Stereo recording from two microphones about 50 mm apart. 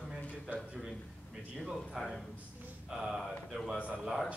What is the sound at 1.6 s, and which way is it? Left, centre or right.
A man's voice, centre.